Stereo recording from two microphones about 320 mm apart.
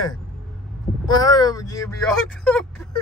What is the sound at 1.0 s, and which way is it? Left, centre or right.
Speech, centre.